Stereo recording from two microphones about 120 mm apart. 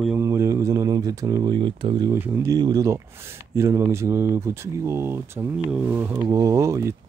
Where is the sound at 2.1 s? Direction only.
20° right (ahead or behind).